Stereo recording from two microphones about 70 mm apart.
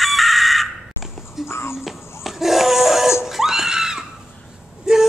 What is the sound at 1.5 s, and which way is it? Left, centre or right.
Music, left.